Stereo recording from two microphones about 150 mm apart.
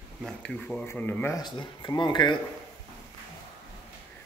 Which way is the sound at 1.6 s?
30° left (ahead or behind).